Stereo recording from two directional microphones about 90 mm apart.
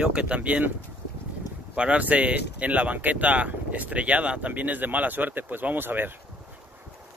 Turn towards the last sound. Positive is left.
turn(degrees=-20)  # may be behind; listen again after turning